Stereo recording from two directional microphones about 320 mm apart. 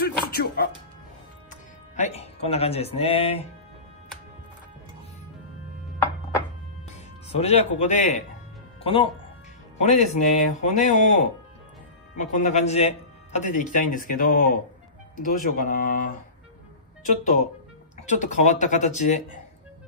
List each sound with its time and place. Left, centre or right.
0.0 s music: left
1.5 s speech: left
7.2 s a man's voice: centre